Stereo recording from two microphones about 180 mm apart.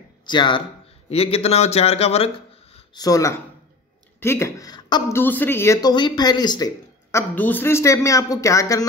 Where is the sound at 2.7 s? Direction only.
20° left (ahead or behind).